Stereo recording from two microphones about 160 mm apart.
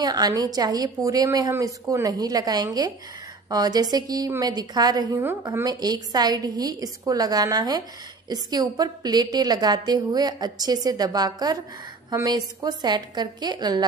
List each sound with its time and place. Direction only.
0.0 s a woman's voice: 25° right (ahead or behind)